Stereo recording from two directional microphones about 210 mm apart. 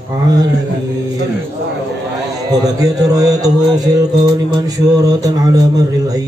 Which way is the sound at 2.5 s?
15° right (ahead or behind).